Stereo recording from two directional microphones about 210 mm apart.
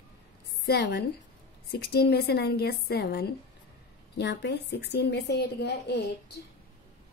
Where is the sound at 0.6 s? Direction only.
50° left (ahead or behind).